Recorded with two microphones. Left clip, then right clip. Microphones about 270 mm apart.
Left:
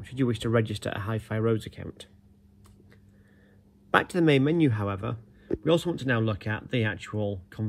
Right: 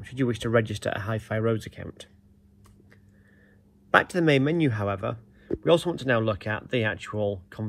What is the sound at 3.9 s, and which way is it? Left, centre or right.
Speech, centre.